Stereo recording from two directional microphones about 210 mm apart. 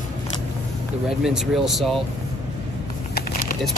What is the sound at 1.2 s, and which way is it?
Speech, centre (ahead or behind).